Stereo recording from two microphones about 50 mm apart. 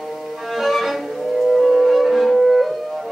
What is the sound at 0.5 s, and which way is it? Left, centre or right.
Music, centre.